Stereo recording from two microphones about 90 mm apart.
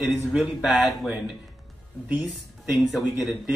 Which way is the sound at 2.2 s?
5° right (ahead or behind).